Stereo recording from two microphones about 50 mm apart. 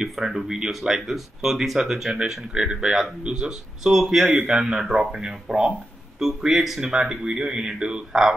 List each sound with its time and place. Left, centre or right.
0.1 s speech: centre